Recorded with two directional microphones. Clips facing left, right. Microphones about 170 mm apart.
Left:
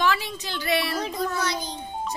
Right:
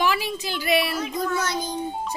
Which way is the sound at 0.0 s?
10° right (ahead or behind).